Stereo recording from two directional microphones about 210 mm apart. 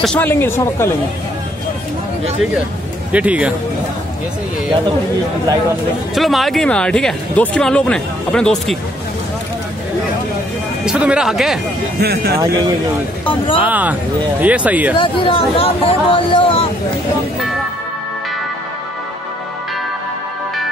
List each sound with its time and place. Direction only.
0.0 s speech: 5° left (ahead or behind)
3.1 s speech: 5° right (ahead or behind)
6.1 s speech: centre (ahead or behind)
10.9 s speech: 5° right (ahead or behind)
12.0 s speech: 50° right (ahead or behind)
12.4 s speech: 15° right (ahead or behind)
15.0 s speech: 25° left (ahead or behind)